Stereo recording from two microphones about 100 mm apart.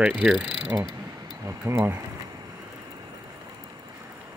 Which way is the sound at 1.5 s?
25° right (ahead or behind).